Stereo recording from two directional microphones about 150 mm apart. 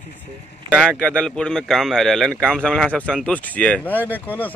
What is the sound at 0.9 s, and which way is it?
A man's voice, 5° left (ahead or behind).